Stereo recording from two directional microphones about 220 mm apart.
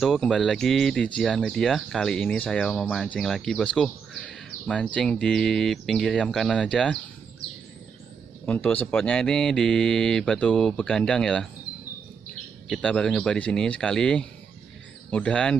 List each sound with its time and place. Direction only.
0.0 s speech: centre (ahead or behind)
8.5 s speech: 5° left (ahead or behind)
12.6 s speech: centre (ahead or behind)